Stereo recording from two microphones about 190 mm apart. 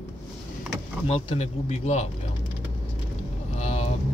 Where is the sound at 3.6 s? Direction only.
35° left (ahead or behind).